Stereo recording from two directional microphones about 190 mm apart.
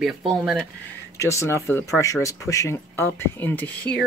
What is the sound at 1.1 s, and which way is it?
Speech, 15° left (ahead or behind).